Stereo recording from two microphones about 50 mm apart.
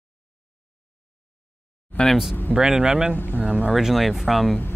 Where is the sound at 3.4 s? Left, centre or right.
Right.